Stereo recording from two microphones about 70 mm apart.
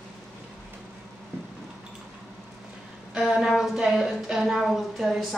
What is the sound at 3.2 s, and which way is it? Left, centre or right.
Speech, centre.